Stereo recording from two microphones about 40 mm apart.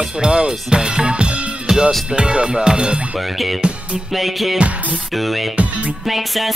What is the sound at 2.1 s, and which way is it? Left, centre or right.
Speech, right.